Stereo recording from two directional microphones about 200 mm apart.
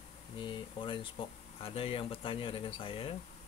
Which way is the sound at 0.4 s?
25° left (ahead or behind).